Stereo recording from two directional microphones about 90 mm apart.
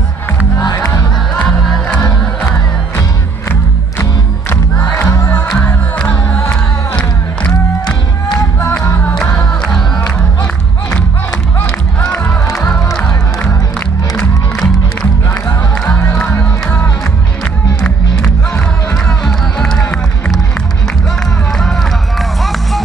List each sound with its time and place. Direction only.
0.6 s music: 40° left (ahead or behind)
4.9 s music: 35° left (ahead or behind)
5.9 s music: 20° left (ahead or behind)
9.2 s music: 10° left (ahead or behind)
12.1 s music: 15° left (ahead or behind)
17.8 s music: 10° left (ahead or behind)
22.4 s music: centre (ahead or behind)